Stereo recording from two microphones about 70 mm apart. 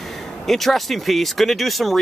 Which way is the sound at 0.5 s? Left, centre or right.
Centre.